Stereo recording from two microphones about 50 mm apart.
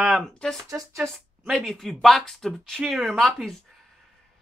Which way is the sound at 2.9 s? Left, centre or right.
Centre.